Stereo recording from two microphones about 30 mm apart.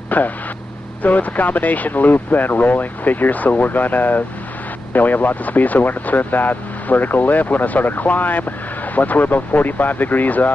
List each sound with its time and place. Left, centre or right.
0.1 s speech: left